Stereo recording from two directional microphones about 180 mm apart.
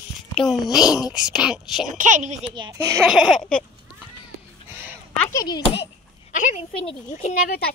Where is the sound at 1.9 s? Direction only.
45° right (ahead or behind).